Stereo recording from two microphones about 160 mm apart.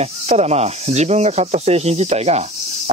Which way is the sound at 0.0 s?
40° right (ahead or behind).